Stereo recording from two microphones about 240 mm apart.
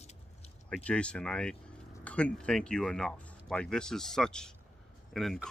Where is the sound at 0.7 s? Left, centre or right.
Centre.